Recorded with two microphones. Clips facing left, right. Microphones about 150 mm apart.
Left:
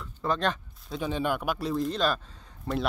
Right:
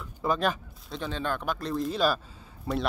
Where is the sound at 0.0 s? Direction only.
10° right (ahead or behind).